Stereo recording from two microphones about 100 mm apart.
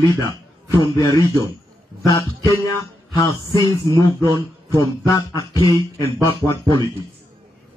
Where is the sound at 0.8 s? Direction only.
35° left (ahead or behind).